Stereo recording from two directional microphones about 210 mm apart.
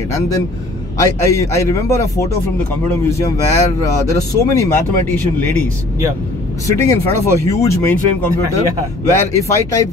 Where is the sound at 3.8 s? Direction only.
15° left (ahead or behind).